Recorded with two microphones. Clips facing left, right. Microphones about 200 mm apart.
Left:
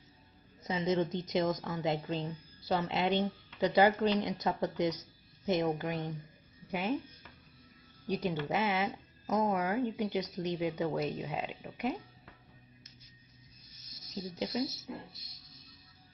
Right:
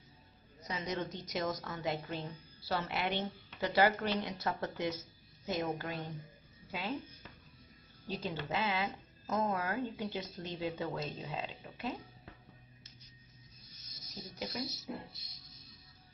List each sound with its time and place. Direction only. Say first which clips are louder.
0.7 s speech: left 8 dB; 25° left (ahead or behind)
0.9 s a woman's voice: left 6 dB; centre (ahead or behind)
1.3 s a woman's voice: left 4 dB; 20° left (ahead or behind)
8.1 s a woman's voice: left 5 dB; 15° left (ahead or behind)
14.2 s speech: left 6 dB; 25° left (ahead or behind)